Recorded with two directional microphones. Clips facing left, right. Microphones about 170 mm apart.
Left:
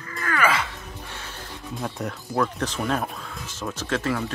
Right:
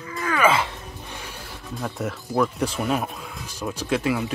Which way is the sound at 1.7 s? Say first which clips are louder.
Right 2 dB; centre (ahead or behind).